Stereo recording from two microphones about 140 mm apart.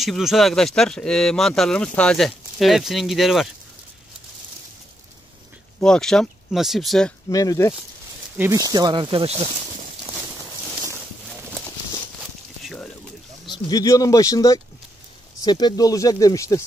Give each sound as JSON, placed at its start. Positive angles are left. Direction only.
{"t": 0.0, "sound": "speech", "side_deg": 0}
{"t": 5.8, "sound": "speech", "side_deg": 5}
{"t": 7.2, "sound": "speech", "side_deg": 25}
{"t": 8.4, "sound": "speech", "side_deg": -20}
{"t": 13.5, "sound": "speech", "side_deg": 25}